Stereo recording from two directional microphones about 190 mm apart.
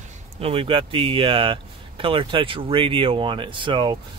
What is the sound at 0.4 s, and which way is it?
Speech, 30° right (ahead or behind).